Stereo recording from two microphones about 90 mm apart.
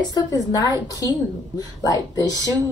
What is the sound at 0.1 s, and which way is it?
A woman's voice, 45° left (ahead or behind).